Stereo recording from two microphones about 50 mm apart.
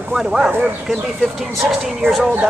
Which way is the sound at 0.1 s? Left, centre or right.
Centre.